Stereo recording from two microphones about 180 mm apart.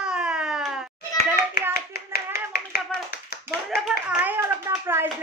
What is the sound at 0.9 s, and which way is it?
Hands, 60° left (ahead or behind).